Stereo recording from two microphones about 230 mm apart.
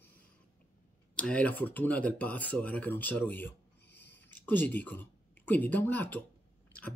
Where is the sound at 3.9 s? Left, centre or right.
Left.